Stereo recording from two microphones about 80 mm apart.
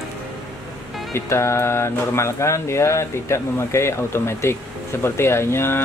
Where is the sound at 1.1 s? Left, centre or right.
Left.